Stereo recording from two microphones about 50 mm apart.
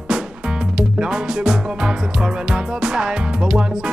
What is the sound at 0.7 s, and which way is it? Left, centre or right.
Music, centre.